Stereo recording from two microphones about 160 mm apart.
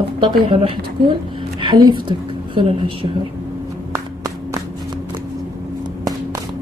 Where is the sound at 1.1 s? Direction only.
30° right (ahead or behind).